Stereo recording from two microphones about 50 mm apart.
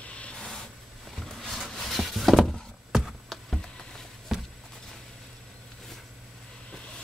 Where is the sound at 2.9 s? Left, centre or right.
Centre.